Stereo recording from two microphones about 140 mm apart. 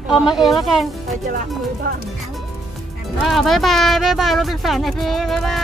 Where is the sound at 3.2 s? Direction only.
Centre (ahead or behind).